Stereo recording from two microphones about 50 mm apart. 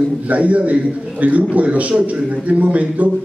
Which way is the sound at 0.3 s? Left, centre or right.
Right.